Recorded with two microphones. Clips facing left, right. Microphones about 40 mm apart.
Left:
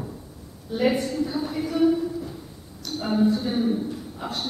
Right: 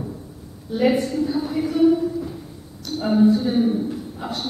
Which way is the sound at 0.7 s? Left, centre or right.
Centre.